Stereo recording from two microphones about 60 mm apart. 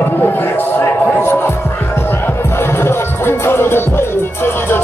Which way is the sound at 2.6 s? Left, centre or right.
Left.